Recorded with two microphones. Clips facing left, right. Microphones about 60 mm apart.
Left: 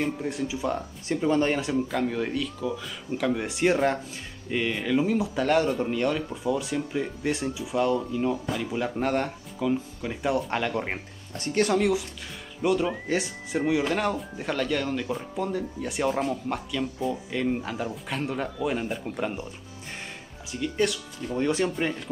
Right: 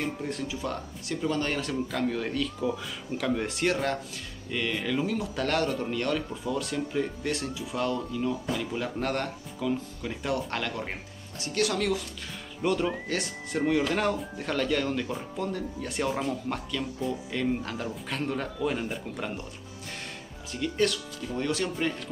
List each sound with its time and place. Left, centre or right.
0.0 s speech: centre
10.7 s speech: left
11.7 s speech: centre
12.6 s speech: centre
13.1 s speech: centre
20.5 s speech: centre
21.3 s speech: centre